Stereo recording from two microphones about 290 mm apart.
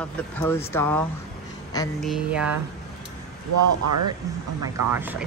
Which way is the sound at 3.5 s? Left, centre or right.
Right.